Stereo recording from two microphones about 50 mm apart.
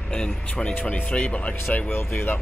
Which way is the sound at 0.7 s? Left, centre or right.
Left.